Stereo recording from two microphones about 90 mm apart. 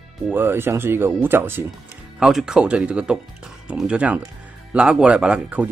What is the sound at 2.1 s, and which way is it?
A man's voice, 5° right (ahead or behind).